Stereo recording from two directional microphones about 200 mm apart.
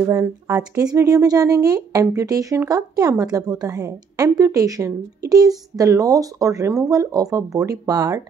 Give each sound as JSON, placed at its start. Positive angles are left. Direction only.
{"t": 0.0, "sound": "speech", "side_deg": -15}